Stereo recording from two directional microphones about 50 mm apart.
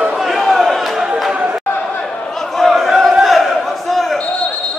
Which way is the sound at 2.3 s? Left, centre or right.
Centre.